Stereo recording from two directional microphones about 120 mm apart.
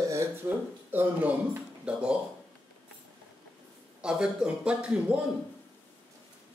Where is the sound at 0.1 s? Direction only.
20° right (ahead or behind).